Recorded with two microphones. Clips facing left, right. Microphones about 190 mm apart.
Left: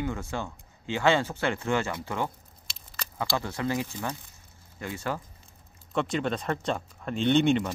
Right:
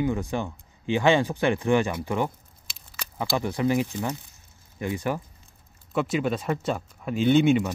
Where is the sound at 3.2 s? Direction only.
15° right (ahead or behind).